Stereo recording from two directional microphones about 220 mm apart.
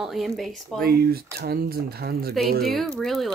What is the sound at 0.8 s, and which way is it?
Speech, 45° right (ahead or behind).